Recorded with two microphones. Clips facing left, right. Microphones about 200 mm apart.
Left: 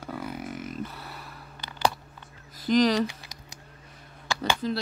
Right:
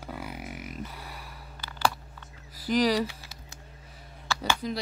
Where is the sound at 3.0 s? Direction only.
15° left (ahead or behind).